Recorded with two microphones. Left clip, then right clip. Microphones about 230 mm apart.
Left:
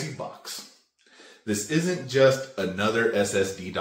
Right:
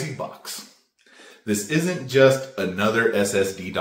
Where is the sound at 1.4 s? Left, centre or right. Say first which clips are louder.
Right 3 dB; centre.